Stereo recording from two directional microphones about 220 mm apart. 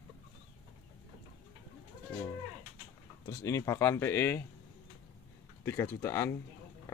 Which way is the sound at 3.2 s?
15° left (ahead or behind).